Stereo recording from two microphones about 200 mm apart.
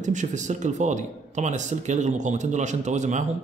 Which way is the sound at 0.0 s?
40° right (ahead or behind).